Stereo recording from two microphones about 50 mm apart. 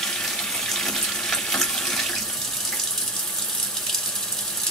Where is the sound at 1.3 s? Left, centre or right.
Centre.